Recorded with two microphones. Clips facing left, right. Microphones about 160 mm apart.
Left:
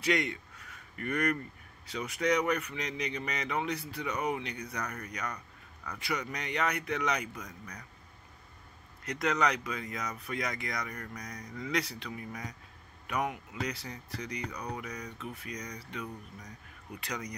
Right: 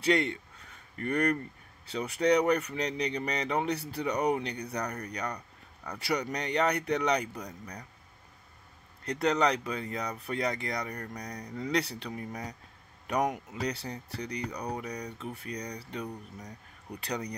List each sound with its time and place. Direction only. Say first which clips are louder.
0.0 s a sound: right 3 dB; 35° right (ahead or behind)
1.9 s speech: right 4 dB; 30° right (ahead or behind)
9.0 s speech: right 3 dB; 35° right (ahead or behind)